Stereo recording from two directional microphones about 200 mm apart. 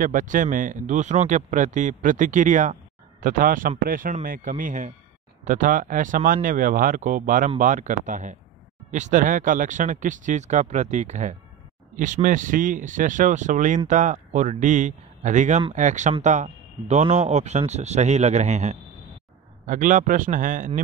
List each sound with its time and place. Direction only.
0.0 s speech: 40° right (ahead or behind)